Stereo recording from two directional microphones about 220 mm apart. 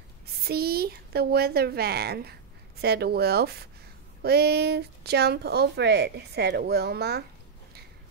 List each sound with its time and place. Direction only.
0.5 s speech: 45° right (ahead or behind)